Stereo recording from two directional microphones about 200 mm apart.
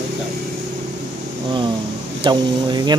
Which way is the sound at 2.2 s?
20° right (ahead or behind).